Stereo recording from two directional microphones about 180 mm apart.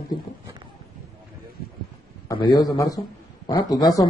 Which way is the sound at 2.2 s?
25° left (ahead or behind).